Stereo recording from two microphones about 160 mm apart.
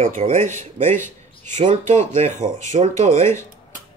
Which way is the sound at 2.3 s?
50° right (ahead or behind).